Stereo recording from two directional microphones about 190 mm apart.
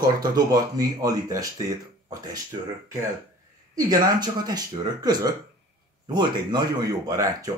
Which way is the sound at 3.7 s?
20° right (ahead or behind).